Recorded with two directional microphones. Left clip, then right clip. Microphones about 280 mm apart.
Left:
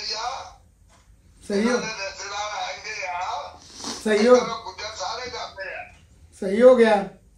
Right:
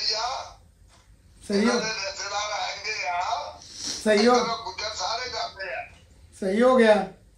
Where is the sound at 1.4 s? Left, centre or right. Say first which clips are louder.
Left 1 dB; centre.